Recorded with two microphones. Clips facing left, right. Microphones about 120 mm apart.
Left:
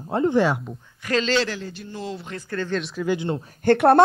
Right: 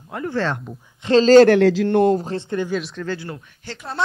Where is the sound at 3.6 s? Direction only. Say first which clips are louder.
Left 19 dB; 60° left (ahead or behind).